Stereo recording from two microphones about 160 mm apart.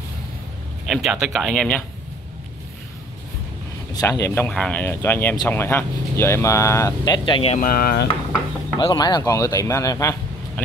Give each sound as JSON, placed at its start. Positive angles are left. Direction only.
{"t": 0.8, "sound": "speech", "side_deg": 0}
{"t": 3.9, "sound": "speech", "side_deg": 20}
{"t": 4.5, "sound": "speech", "side_deg": 5}
{"t": 7.2, "sound": "speech", "side_deg": 30}
{"t": 7.5, "sound": "speech", "side_deg": 60}
{"t": 8.7, "sound": "speech", "side_deg": 25}